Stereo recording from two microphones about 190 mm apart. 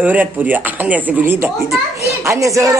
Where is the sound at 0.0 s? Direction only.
10° right (ahead or behind).